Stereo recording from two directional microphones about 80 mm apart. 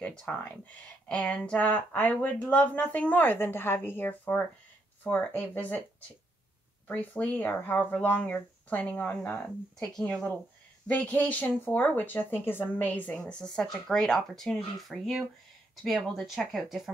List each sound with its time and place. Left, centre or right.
0.0 s speech: centre
6.9 s speech: left
9.4 s speech: centre
10.9 s speech: centre
13.2 s speech: centre